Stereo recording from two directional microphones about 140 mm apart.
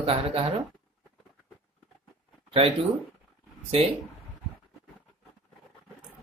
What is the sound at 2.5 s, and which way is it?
Speech, 40° right (ahead or behind).